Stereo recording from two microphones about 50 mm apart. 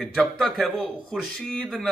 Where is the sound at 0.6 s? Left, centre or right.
Centre.